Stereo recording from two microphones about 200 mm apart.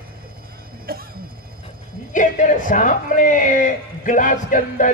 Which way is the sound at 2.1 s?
40° left (ahead or behind).